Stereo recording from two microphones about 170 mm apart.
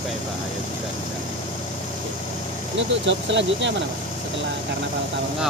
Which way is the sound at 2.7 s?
90° right.